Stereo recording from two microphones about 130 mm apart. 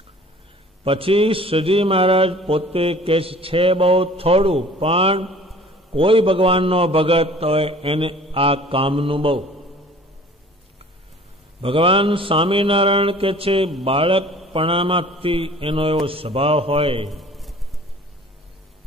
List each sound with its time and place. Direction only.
0.8 s mantra: 45° right (ahead or behind)
11.6 s mantra: 45° right (ahead or behind)
17.1 s a sound: centre (ahead or behind)